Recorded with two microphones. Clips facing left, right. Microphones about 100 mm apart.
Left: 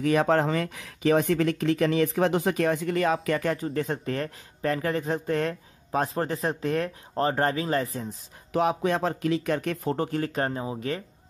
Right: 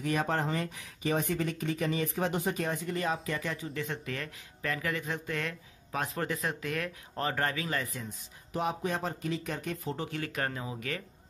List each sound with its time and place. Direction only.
0.0 s speech: 90° left; by 3.6 s 55° left (ahead or behind)
3.6 s speech: 40° left (ahead or behind)
8.5 s speech: 90° left
9.9 s speech: 40° left (ahead or behind)